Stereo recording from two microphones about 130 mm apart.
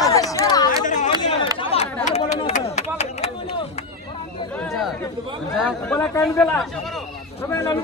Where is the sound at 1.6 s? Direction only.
50° left (ahead or behind).